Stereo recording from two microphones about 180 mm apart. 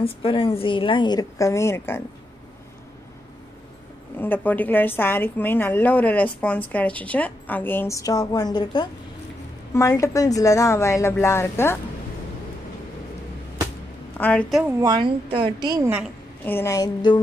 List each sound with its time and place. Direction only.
0.0 s a woman's voice: 30° left (ahead or behind); by 2.0 s 15° left (ahead or behind)
4.2 s a woman's voice: 10° left (ahead or behind)
14.1 s a woman's voice: 10° left (ahead or behind)
14.8 s a woman's voice: 25° right (ahead or behind)
16.4 s a woman's voice: 15° left (ahead or behind)